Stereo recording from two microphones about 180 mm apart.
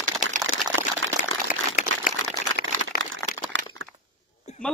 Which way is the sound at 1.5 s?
50° left (ahead or behind).